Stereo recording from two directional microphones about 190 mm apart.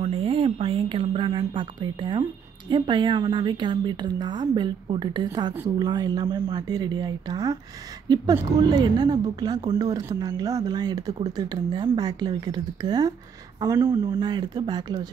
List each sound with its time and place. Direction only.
0.0 s a woman's voice: 30° right (ahead or behind)